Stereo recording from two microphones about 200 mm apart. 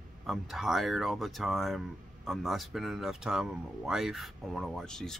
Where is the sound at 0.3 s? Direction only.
Centre (ahead or behind).